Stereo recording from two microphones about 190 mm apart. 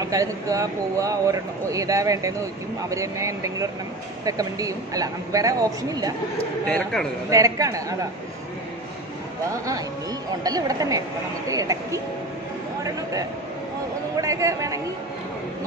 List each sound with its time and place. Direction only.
0.0 s speech: 20° right (ahead or behind)
6.6 s speech: 5° left (ahead or behind)
7.2 s speech: 15° right (ahead or behind)
9.5 s speech: 15° right (ahead or behind)
14.2 s speech: 15° right (ahead or behind)